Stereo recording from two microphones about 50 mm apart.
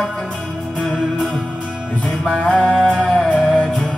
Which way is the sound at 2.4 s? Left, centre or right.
Centre.